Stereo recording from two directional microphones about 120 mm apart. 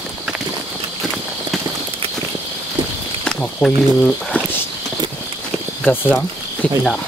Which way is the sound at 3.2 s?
5° left (ahead or behind).